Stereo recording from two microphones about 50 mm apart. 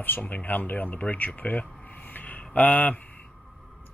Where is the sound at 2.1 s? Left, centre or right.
Left.